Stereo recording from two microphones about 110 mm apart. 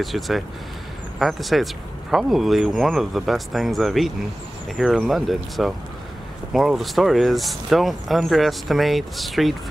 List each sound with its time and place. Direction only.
0.0 s speech: centre (ahead or behind)